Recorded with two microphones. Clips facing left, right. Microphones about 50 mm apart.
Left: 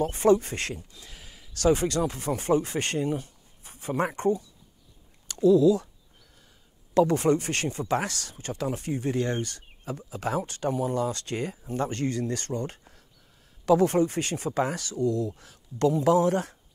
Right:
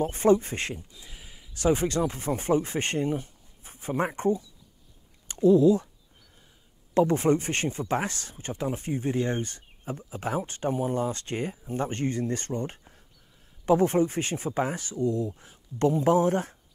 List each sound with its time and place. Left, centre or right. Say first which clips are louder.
0.0 s speech: even; right
5.3 s speech: even; right
6.9 s speech: left 1 dB; right